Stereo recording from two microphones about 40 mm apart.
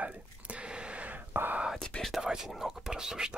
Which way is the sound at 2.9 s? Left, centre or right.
Centre.